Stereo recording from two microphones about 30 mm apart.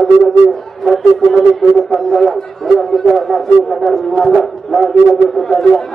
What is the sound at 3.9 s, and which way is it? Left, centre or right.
Music, centre.